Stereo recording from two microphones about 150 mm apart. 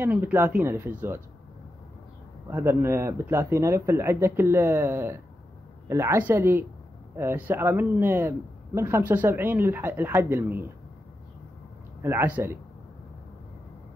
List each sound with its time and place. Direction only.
0.0 s speech: 15° right (ahead or behind)
2.5 s speech: 15° right (ahead or behind)
12.0 s speech: 15° right (ahead or behind)